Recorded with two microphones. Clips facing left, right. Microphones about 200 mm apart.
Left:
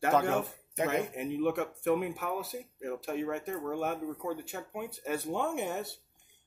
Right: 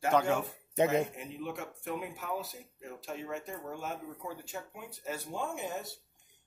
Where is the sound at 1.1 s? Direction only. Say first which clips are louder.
Left 9 dB; 60° left (ahead or behind).